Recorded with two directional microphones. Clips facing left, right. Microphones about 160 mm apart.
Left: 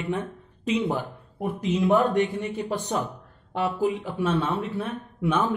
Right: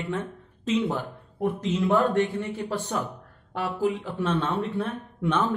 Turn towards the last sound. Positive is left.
turn(degrees=10)  # may be behind; listen again after turning